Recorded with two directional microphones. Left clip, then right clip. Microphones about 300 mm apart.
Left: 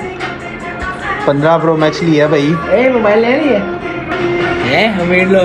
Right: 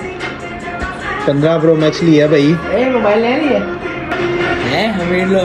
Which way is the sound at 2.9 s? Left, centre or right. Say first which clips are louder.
Left 2 dB; centre.